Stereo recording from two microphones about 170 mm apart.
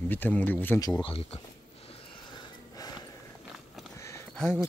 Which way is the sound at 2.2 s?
25° left (ahead or behind).